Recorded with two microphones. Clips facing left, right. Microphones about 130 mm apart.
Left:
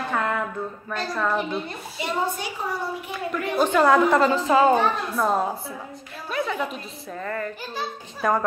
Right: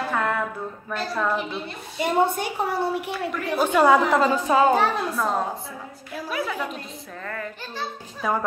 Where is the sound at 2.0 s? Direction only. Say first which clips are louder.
Right 5 dB; 60° right (ahead or behind).